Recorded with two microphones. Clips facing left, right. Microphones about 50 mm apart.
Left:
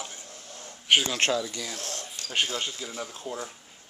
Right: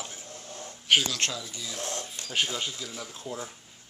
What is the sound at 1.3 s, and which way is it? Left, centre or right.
Speech, left.